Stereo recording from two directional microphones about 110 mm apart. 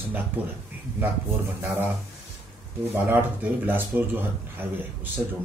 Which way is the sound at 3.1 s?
20° right (ahead or behind).